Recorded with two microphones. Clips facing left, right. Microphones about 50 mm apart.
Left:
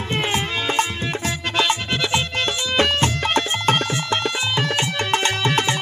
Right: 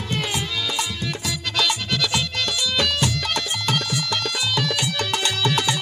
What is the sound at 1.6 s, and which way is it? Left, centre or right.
Music, left.